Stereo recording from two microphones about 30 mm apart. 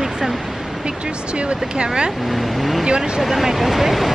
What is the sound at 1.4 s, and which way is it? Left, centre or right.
Speech, right.